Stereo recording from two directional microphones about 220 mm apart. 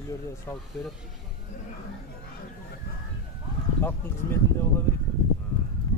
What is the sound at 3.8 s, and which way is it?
Speech, 10° left (ahead or behind).